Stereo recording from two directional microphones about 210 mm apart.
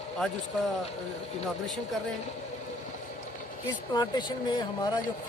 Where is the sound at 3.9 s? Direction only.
20° left (ahead or behind).